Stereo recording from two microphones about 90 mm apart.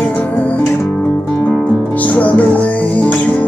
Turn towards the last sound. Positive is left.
turn(degrees=15)  # may be behind; listen again after turning